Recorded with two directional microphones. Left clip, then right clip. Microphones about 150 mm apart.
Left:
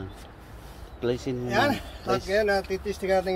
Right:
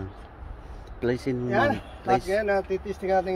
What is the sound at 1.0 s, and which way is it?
Speech, 40° right (ahead or behind).